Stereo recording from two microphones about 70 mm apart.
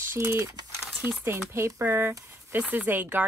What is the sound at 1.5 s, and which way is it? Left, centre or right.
Speech, right.